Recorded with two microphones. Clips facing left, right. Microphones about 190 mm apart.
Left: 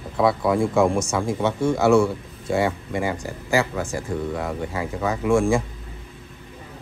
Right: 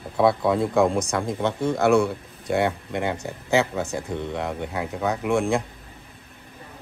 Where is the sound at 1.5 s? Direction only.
15° right (ahead or behind).